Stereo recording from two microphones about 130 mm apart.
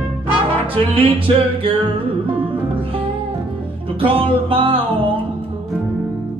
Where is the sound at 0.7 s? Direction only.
45° right (ahead or behind).